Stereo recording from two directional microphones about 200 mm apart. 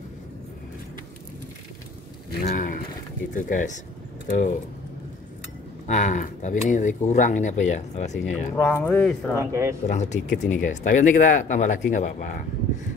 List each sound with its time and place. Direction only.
2.4 s a sound: 40° left (ahead or behind)
3.3 s speech: 40° left (ahead or behind)
5.9 s speech: 35° left (ahead or behind)
8.5 s speech: 10° left (ahead or behind)
9.4 s speech: 15° right (ahead or behind)
9.8 s speech: 35° left (ahead or behind)